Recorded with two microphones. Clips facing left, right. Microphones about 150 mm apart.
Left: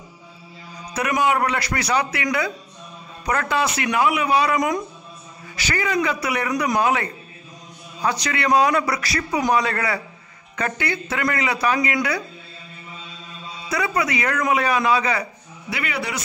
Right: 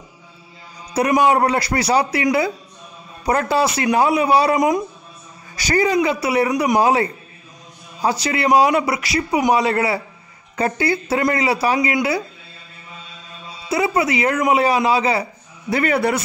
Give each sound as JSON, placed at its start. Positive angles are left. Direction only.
{"t": 0.9, "sound": "a man's voice", "side_deg": -30}
{"t": 13.7, "sound": "a man's voice", "side_deg": -25}
{"t": 15.7, "sound": "speech", "side_deg": -45}